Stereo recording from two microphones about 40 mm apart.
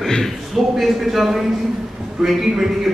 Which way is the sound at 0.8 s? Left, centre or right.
Centre.